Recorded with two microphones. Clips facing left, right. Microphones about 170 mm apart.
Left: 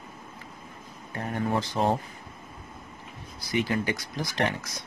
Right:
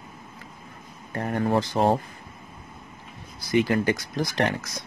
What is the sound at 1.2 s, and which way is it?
Speech, 50° right (ahead or behind).